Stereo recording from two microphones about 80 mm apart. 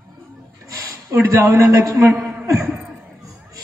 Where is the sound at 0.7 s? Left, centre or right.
Right.